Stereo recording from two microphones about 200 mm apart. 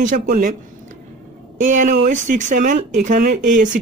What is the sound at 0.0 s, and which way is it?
Speech, 45° right (ahead or behind).